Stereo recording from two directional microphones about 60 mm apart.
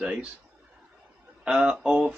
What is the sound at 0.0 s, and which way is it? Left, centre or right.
Speech, centre.